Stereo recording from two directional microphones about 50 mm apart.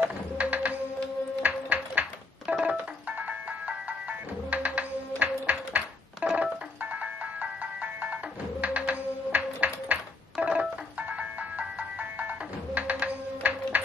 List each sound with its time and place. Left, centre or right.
0.0 s music: right